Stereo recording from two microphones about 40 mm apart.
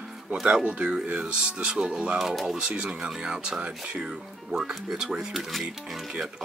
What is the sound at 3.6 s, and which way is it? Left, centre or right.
Speech, right.